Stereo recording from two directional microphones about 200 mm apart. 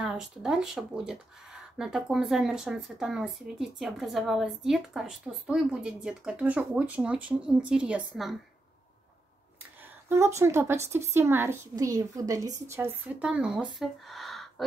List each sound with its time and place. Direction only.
0.0 s speech: 5° right (ahead or behind)
10.0 s a woman's voice: 15° right (ahead or behind)